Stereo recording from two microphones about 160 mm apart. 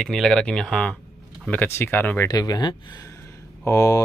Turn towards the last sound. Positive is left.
turn(degrees=20)  # may be behind; listen again after turning